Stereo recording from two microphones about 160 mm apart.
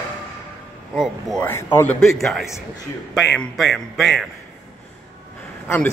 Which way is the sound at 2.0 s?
Centre (ahead or behind).